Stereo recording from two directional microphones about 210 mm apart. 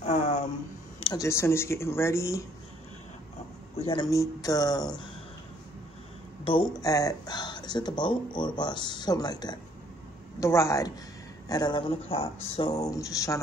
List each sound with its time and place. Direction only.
0.0 s a sound: 35° left (ahead or behind)
1.1 s speech: 15° left (ahead or behind)
3.7 s speech: 25° left (ahead or behind)
6.4 s speech: 25° left (ahead or behind)